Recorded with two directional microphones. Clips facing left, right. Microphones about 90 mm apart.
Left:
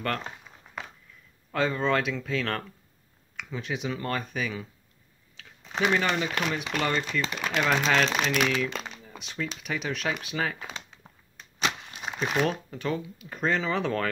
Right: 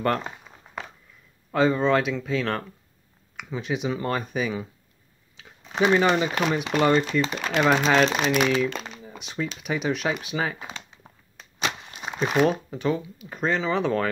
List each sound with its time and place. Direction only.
0.0 s speech: 20° right (ahead or behind)
0.7 s walk: 15° right (ahead or behind)
1.5 s speech: 10° right (ahead or behind)
8.7 s a sound: 5° right (ahead or behind)
9.1 s speech: 10° right (ahead or behind)
10.7 s crumpling: 5° right (ahead or behind)
12.3 s speech: 10° right (ahead or behind)